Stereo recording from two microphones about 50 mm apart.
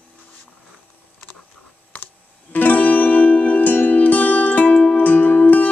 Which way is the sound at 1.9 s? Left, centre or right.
Left.